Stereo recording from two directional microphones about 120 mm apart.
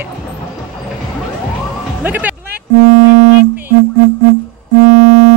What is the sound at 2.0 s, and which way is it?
Speech, 15° right (ahead or behind).